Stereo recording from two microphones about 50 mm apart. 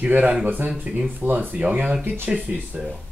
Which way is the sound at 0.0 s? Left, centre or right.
Right.